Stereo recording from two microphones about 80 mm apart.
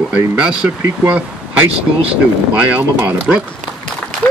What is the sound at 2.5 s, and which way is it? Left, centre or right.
Speech, right.